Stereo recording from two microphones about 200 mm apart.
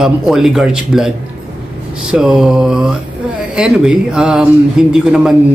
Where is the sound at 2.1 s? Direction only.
Centre (ahead or behind).